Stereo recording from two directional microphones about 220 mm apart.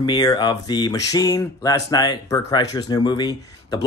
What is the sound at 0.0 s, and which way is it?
Speech, 20° left (ahead or behind).